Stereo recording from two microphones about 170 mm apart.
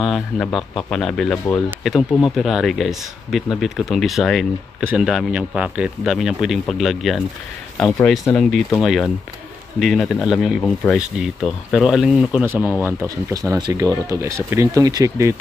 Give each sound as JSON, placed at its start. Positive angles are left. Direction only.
{"t": 0.0, "sound": "speech", "side_deg": 0}